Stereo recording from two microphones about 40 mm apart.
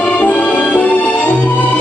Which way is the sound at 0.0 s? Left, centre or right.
Left.